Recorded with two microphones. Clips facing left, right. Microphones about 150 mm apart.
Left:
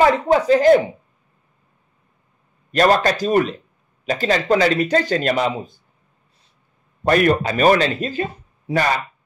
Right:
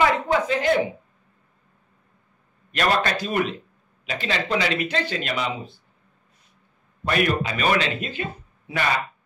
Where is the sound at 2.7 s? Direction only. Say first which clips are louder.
Left 7 dB; 40° left (ahead or behind).